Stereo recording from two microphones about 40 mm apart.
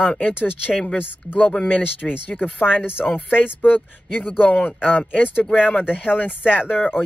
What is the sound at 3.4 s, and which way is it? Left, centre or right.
Speech, left.